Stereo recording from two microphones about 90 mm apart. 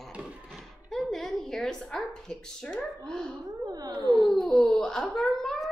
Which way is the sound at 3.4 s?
45° right (ahead or behind).